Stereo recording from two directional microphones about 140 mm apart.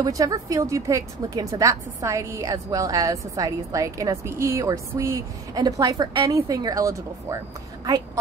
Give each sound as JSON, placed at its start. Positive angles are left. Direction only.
{"t": 0.0, "sound": "a woman's voice", "side_deg": -25}